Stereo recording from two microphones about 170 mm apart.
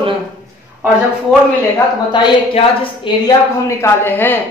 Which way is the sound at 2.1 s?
30° left (ahead or behind).